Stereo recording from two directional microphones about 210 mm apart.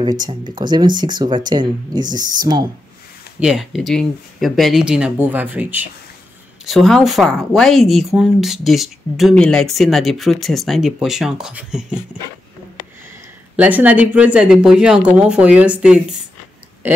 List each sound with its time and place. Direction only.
0.0 s speech: 20° right (ahead or behind)
3.3 s speech: 5° right (ahead or behind)
13.6 s speech: 5° right (ahead or behind)